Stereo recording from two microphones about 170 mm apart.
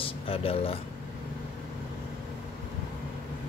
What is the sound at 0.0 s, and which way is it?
Speech, 35° left (ahead or behind).